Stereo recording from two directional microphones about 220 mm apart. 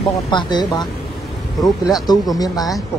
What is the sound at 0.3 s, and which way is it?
Speech, 20° left (ahead or behind).